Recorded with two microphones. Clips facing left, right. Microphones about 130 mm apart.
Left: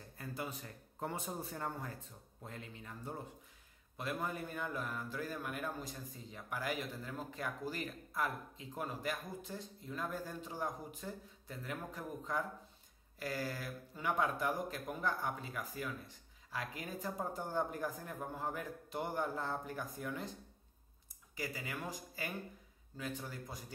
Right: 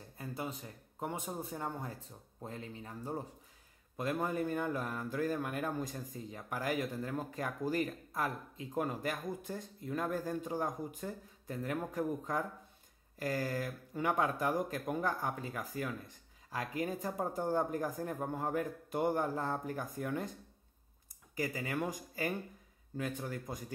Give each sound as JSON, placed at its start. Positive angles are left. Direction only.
{"t": 0.2, "sound": "a sound", "side_deg": -25}
{"t": 0.9, "sound": "speech", "side_deg": -15}
{"t": 3.9, "sound": "speech", "side_deg": -45}
{"t": 21.4, "sound": "speech", "side_deg": -45}